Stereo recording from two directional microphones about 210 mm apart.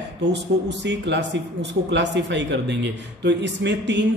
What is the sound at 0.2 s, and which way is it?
Speech, 55° right (ahead or behind).